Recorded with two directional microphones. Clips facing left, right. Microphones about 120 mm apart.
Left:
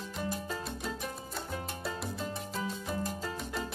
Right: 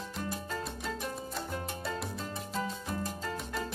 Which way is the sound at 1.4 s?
Centre (ahead or behind).